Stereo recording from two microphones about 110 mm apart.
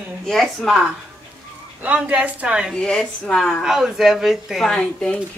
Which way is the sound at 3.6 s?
5° right (ahead or behind).